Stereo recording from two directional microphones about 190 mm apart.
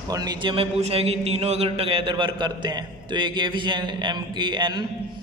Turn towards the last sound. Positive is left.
turn(degrees=-25)  # may be behind; listen again after turning